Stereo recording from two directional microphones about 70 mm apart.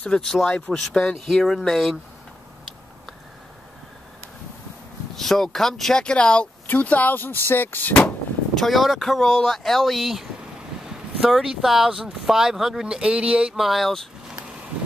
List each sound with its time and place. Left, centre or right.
0.0 s speech: centre
5.1 s speech: centre
6.7 s speech: left
8.5 s speech: centre
13.7 s speech: centre